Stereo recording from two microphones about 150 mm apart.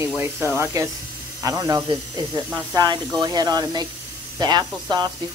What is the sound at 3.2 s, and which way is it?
Speech, 25° right (ahead or behind).